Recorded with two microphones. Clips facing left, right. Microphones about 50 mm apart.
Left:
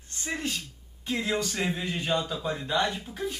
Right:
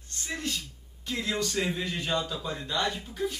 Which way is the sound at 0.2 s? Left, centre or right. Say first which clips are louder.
Left 2 dB; left.